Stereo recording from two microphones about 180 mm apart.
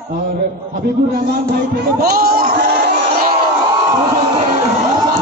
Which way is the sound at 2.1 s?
60° right (ahead or behind).